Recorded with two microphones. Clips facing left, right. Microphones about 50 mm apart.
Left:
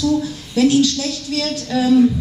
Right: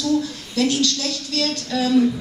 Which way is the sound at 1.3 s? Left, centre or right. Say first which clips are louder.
Left 3 dB; centre.